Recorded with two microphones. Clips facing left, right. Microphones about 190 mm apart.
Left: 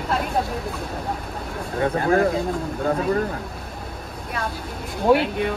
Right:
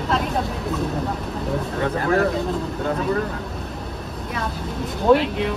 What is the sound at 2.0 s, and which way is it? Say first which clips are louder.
Speech: left 1 dB; 30° left (ahead or behind).